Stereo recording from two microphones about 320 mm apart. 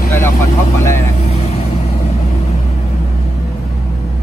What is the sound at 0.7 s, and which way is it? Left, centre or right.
Speech, centre.